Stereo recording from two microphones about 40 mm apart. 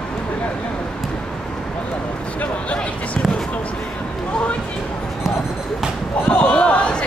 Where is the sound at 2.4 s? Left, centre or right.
Left.